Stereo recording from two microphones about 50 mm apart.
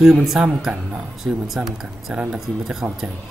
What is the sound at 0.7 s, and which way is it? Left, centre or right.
Speech, right.